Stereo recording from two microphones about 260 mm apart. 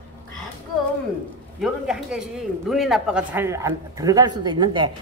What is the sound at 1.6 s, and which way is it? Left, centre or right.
A man's voice, centre.